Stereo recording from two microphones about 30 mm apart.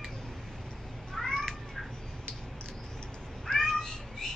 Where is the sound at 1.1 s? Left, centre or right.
Centre.